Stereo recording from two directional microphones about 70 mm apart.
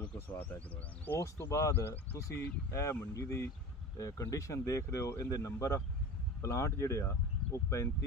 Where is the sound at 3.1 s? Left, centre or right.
Left.